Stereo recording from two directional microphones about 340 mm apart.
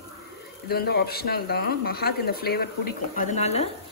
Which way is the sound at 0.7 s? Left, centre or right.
Left.